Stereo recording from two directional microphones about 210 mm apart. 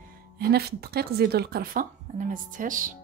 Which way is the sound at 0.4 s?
50° right (ahead or behind).